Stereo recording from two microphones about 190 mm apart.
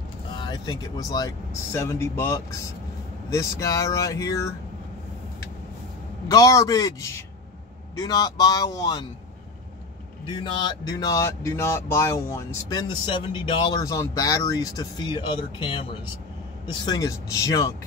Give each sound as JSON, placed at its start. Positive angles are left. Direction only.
{"t": 0.4, "sound": "speech", "side_deg": 20}
{"t": 6.2, "sound": "speech", "side_deg": 15}
{"t": 10.3, "sound": "speech", "side_deg": 25}